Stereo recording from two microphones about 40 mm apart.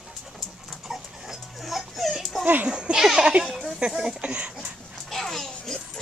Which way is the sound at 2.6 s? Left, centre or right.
Right.